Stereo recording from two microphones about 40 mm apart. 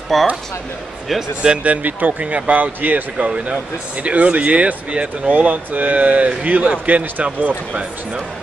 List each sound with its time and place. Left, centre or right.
0.1 s speech: centre
1.6 s speech: right